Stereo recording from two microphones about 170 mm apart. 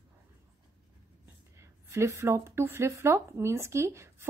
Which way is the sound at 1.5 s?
15° right (ahead or behind).